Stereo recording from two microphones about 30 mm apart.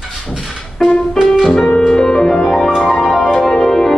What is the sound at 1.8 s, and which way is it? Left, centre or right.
Music, centre.